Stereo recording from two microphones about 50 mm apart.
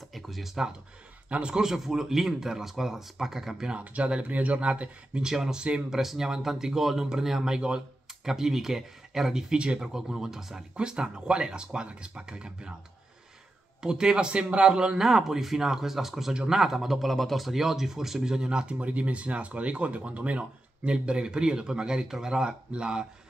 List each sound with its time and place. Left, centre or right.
0.1 s computer keyboard: centre
1.3 s speech: centre
3.7 s speech: right
5.3 s speech: centre
13.8 s speech: centre